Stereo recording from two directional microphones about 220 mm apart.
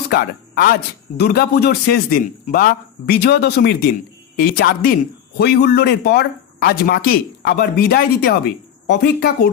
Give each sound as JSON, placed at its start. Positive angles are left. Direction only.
{"t": 0.1, "sound": "speech", "side_deg": 45}